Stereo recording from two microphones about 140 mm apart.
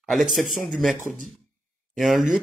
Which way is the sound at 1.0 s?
70° right (ahead or behind).